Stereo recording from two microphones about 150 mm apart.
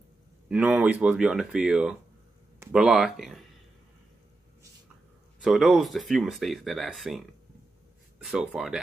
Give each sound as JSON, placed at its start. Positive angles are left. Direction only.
{"t": 0.5, "sound": "speech", "side_deg": -5}
{"t": 5.4, "sound": "speech", "side_deg": 0}